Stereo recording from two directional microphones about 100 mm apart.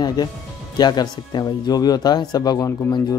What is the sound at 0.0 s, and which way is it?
Speech, 45° left (ahead or behind).